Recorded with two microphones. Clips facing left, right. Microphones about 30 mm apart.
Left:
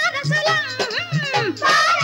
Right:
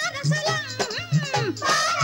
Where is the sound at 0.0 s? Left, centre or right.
Left.